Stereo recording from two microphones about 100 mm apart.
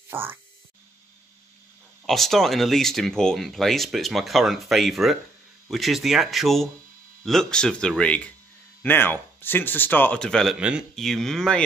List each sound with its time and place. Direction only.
0.1 s speech: 20° right (ahead or behind)
2.0 s speech: centre (ahead or behind)
8.8 s speech: 20° left (ahead or behind)
10.5 s speech: 10° right (ahead or behind)
11.0 s speech: 5° left (ahead or behind)